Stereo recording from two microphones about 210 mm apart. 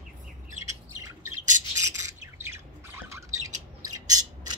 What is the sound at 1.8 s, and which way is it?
Squawk, 15° right (ahead or behind).